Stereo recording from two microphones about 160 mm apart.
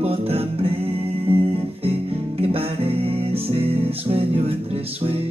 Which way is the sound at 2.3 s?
35° right (ahead or behind).